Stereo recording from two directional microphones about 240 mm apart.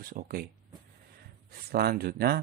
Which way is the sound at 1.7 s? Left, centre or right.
Right.